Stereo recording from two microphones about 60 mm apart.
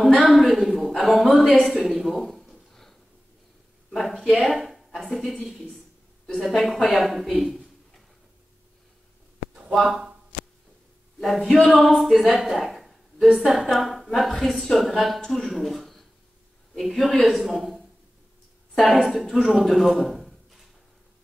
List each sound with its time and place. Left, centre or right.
0.0 s a woman's voice: centre
2.4 s a sound: centre
3.9 s a woman's voice: centre
4.5 s a woman's voice: centre
9.8 s speech: centre
11.1 s a woman's voice: centre
19.6 s a sound: centre